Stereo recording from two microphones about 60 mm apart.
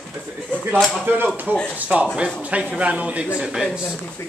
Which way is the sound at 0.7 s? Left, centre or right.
Centre.